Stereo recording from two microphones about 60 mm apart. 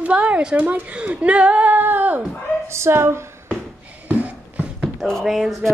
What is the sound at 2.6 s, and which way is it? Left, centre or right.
Speech, right.